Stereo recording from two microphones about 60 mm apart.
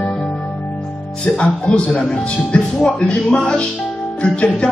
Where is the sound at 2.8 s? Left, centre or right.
Centre.